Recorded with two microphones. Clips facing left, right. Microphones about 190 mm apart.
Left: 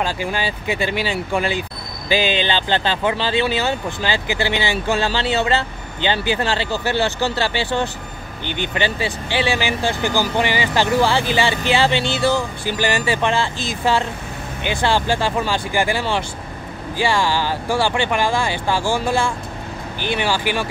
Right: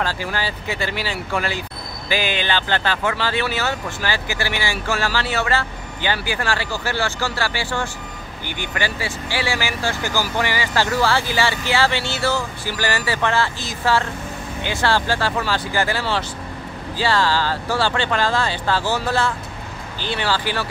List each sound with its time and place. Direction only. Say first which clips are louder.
0.0 s speech: left 2 dB; 20° left (ahead or behind)